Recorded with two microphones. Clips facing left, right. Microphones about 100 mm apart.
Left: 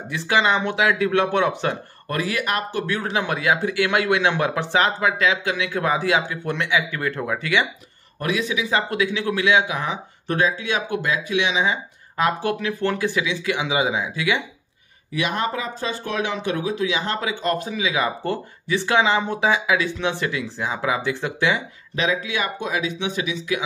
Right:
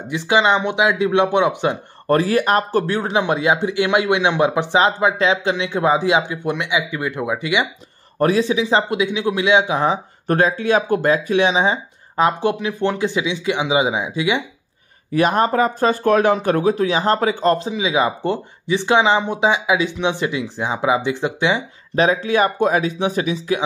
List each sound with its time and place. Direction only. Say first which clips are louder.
0.1 s speech: right 4 dB; 20° right (ahead or behind)
2.0 s speech: right 8 dB; 35° right (ahead or behind); by 7.6 s 15° right (ahead or behind)
8.2 s speech: right 7 dB; 35° right (ahead or behind)
10.2 s speech: right 5 dB; 45° right (ahead or behind); by 14.4 s 20° right (ahead or behind)
15.1 s speech: right 8 dB; 40° right (ahead or behind); by 21.6 s 20° right (ahead or behind)
21.9 s speech: right 7 dB; 40° right (ahead or behind)